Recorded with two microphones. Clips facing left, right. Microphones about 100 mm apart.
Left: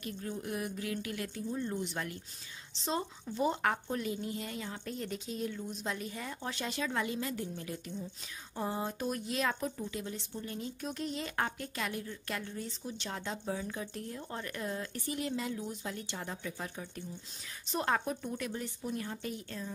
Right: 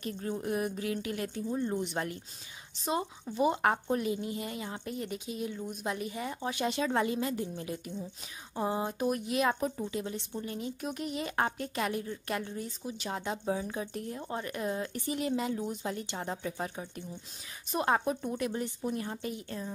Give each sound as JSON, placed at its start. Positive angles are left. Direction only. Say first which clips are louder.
{"t": 0.0, "sound": "a woman's voice", "louder": "right 4 dB", "side_deg": -30}
{"t": 9.5, "sound": "speech", "louder": "right 4 dB", "side_deg": -30}
{"t": 12.6, "sound": "a woman's voice", "louder": "right 3 dB", "side_deg": -10}
{"t": 17.6, "sound": "a woman's voice", "louder": "right 3 dB", "side_deg": -15}
{"t": 17.9, "sound": "speech", "louder": "right 4 dB", "side_deg": -25}